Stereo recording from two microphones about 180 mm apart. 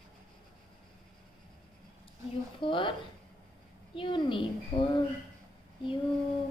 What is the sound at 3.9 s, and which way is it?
Speech, 25° left (ahead or behind).